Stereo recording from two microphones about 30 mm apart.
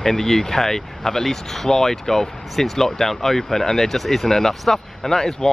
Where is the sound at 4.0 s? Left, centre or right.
Centre.